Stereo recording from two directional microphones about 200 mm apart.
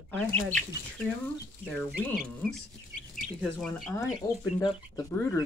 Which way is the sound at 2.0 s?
5° left (ahead or behind).